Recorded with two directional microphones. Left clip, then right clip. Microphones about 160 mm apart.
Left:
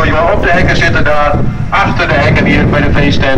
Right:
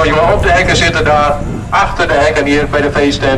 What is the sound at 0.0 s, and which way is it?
Speech, 45° left (ahead or behind).